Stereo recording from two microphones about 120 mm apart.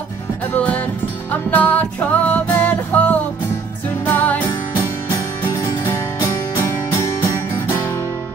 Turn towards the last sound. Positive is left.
turn(degrees=20)  # may be behind; listen again after turning